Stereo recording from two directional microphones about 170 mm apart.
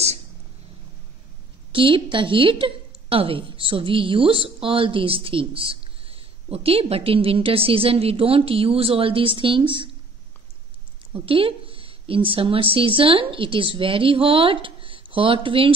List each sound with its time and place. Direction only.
1.7 s a woman's voice: 30° right (ahead or behind)
11.1 s a woman's voice: 35° right (ahead or behind)